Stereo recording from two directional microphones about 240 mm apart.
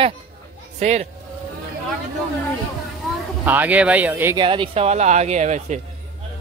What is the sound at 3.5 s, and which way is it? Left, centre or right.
Speech, centre.